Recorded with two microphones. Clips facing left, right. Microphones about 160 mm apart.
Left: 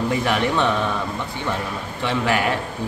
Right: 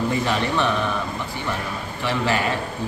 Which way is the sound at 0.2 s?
15° left (ahead or behind).